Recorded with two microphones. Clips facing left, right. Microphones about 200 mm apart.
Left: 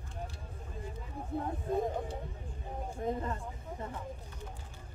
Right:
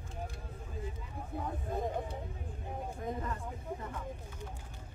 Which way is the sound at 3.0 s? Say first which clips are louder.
Left 5 dB; 25° left (ahead or behind).